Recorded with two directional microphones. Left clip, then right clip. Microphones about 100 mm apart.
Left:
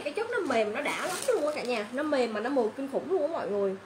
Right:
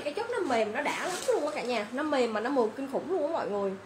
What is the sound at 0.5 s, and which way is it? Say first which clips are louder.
Speech: right 1 dB; centre (ahead or behind).